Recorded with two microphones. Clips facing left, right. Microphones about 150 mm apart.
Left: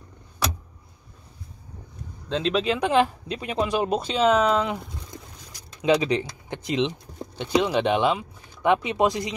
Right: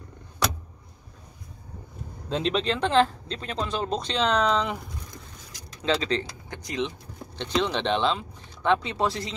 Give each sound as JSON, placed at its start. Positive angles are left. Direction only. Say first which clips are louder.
{"t": 2.2, "sound": "speech", "louder": "left 2 dB", "side_deg": 0}
{"t": 5.8, "sound": "speech", "louder": "left 5 dB", "side_deg": 15}
{"t": 7.3, "sound": "speech", "louder": "left 4 dB", "side_deg": 10}